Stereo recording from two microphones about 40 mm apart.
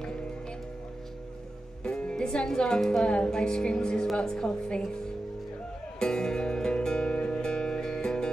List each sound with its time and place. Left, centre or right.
1.9 s music: left
2.3 s speech: centre
5.9 s music: centre